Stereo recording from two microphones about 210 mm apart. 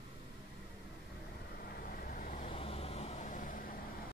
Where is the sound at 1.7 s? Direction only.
45° left (ahead or behind).